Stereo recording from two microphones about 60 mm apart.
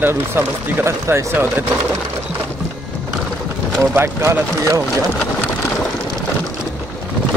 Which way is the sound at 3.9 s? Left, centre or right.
Right.